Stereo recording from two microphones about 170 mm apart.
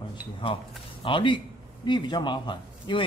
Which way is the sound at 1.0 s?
30° left (ahead or behind).